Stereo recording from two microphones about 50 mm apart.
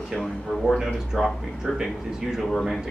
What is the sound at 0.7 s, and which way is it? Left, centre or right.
Speech, centre.